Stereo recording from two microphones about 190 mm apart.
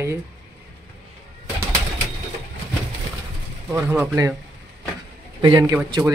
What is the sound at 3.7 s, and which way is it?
Speech, 10° right (ahead or behind).